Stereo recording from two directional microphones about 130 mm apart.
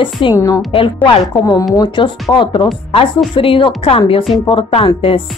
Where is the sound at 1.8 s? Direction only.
40° left (ahead or behind).